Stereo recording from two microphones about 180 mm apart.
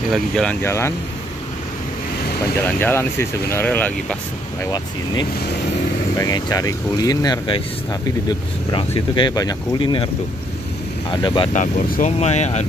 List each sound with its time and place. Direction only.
0.1 s speech: 5° left (ahead or behind)
2.6 s speech: 10° left (ahead or behind)
6.1 s speech: 20° left (ahead or behind)
11.1 s speech: 25° left (ahead or behind)
11.5 s speech: 45° left (ahead or behind)